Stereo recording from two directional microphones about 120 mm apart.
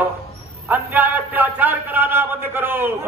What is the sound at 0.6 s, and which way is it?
A man's voice, 15° right (ahead or behind).